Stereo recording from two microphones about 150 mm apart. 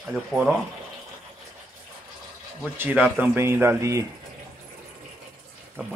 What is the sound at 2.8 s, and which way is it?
Speech, 10° right (ahead or behind).